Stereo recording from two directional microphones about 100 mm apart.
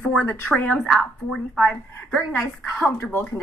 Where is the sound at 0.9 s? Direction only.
5° left (ahead or behind).